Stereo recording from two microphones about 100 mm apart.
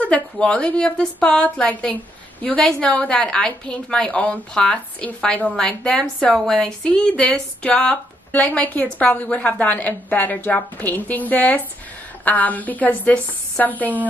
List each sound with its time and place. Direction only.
0.0 s a woman's voice: 10° left (ahead or behind)